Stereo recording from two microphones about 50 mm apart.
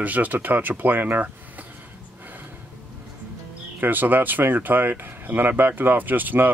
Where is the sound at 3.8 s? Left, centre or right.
Right.